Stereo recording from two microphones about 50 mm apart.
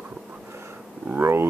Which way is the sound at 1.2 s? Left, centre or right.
Right.